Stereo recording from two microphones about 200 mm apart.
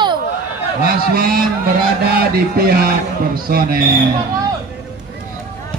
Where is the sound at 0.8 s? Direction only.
50° right (ahead or behind).